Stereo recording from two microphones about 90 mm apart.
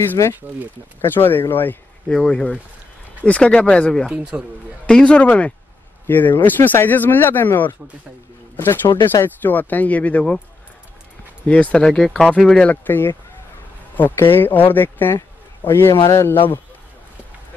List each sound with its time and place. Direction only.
0.2 s speech: 40° left (ahead or behind)
1.0 s speech: 25° left (ahead or behind)
2.0 s speech: 10° left (ahead or behind)
4.1 s speech: 10° right (ahead or behind)
4.8 s speech: 10° left (ahead or behind)
11.4 s speech: 15° left (ahead or behind)
12.8 s speech: 25° left (ahead or behind)